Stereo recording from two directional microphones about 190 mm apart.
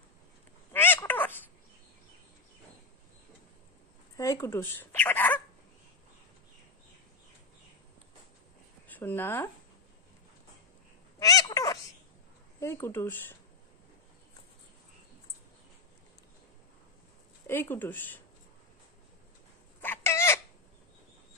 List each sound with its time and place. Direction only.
0.7 s cat: 10° left (ahead or behind)
4.2 s speech: 15° left (ahead or behind)
8.8 s speech: 10° left (ahead or behind)
11.1 s a sound: 20° left (ahead or behind)
12.5 s speech: 15° left (ahead or behind)
17.5 s speech: 10° left (ahead or behind)
19.8 s chicken: 10° left (ahead or behind)